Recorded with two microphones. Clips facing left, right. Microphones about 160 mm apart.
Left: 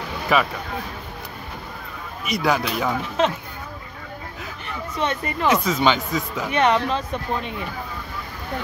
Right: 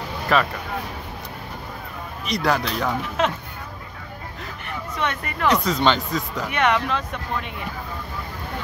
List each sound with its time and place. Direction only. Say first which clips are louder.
0.3 s speech: even; 5° left (ahead or behind)
2.2 s speech: left 1 dB; centre (ahead or behind)
4.9 s speech: left 3 dB; 30° left (ahead or behind)
5.5 s speech: even; centre (ahead or behind)
6.5 s speech: left 2 dB; 30° left (ahead or behind)